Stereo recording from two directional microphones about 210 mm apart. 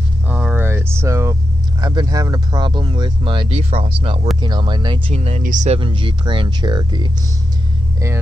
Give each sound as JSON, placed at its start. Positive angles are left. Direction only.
{"t": 0.3, "sound": "a sound", "side_deg": -5}
{"t": 1.8, "sound": "speech", "side_deg": -20}
{"t": 5.8, "sound": "speech", "side_deg": -25}